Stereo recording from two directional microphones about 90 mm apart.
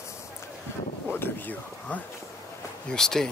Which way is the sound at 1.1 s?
20° left (ahead or behind).